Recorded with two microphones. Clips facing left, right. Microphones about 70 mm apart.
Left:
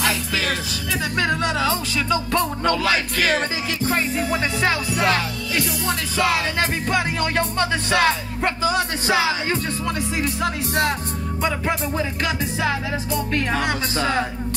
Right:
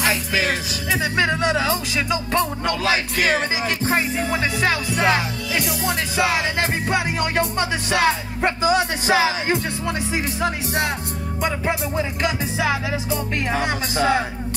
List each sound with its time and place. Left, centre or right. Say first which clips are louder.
0.0 s music: right 2 dB; right
13.1 s music: left 2 dB; right